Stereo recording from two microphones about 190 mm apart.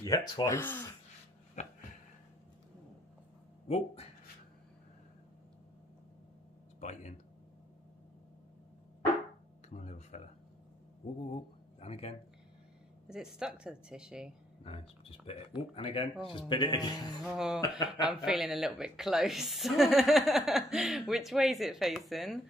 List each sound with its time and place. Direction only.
0.0 s speech: 20° left (ahead or behind)
0.6 s speech: 10° left (ahead or behind)
1.6 s a sound: 40° left (ahead or behind)
3.6 s speech: 30° left (ahead or behind)
6.8 s speech: 40° left (ahead or behind)
9.7 s a sound: 35° left (ahead or behind)
11.8 s speech: 30° left (ahead or behind)
13.1 s a woman's voice: 5° right (ahead or behind)
14.6 s speech: 30° left (ahead or behind)
17.2 s a woman's voice: centre (ahead or behind)
17.6 s speech: 20° left (ahead or behind)
18.2 s a woman's voice: centre (ahead or behind)